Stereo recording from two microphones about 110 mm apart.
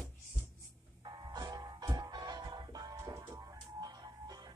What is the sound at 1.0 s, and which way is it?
Music, 40° right (ahead or behind).